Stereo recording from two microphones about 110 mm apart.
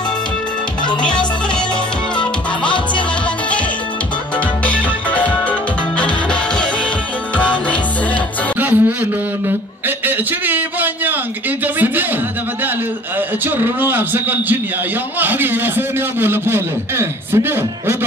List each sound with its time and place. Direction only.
4.6 s music: 15° left (ahead or behind)
8.5 s music: 15° right (ahead or behind)
9.8 s a sound: 15° right (ahead or behind)
11.6 s speech: 15° right (ahead or behind)
13.6 s a man's voice: 20° right (ahead or behind)